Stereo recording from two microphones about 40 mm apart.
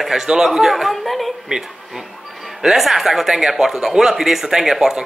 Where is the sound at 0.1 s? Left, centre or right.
Centre.